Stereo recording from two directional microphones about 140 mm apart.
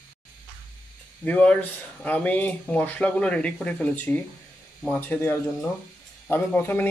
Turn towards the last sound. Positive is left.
turn(degrees=15)  # may be behind; listen again after turning